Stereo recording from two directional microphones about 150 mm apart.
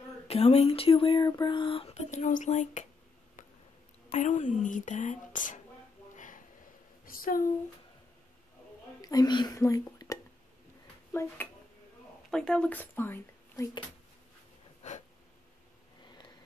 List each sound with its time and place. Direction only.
0.3 s speech: 45° left (ahead or behind)
4.1 s speech: 55° left (ahead or behind)
7.1 s speech: 70° left (ahead or behind)
9.0 s speech: 25° left (ahead or behind)
12.3 s speech: 5° left (ahead or behind)